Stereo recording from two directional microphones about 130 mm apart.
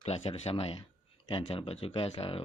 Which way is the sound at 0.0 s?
50° left (ahead or behind).